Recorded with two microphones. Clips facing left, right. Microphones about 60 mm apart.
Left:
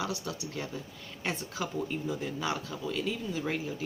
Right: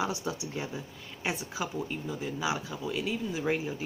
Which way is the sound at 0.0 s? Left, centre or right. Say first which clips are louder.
Right 3 dB; right.